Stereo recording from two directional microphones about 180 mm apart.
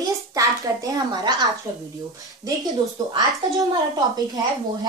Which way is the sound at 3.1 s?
20° right (ahead or behind).